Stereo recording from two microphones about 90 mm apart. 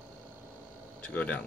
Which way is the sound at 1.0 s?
15° left (ahead or behind).